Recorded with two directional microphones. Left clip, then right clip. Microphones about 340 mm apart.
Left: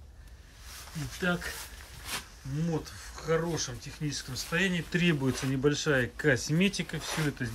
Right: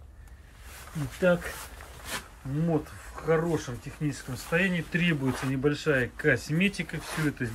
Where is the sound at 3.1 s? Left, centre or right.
Centre.